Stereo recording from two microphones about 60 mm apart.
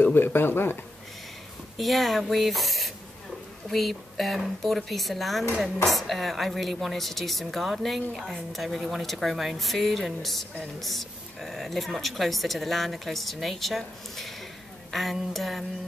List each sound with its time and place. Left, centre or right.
0.0 s speech: left
1.8 s speech: centre